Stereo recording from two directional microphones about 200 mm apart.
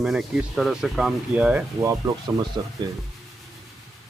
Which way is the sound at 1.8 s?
15° right (ahead or behind).